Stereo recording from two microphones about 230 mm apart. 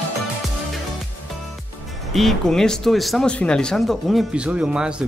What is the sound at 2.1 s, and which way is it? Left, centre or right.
Speech, centre.